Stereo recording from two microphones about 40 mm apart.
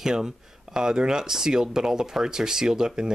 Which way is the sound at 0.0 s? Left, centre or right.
Centre.